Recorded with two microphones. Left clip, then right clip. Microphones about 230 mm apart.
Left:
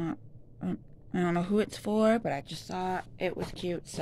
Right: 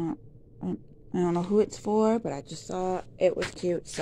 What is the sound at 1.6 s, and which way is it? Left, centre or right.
Speech, left.